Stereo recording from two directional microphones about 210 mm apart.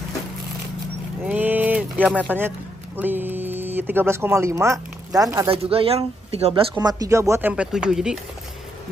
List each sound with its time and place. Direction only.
1.2 s a sound: 10° right (ahead or behind)
3.0 s speech: 10° right (ahead or behind)
5.5 s speech: 25° right (ahead or behind); by 8.2 s 5° right (ahead or behind)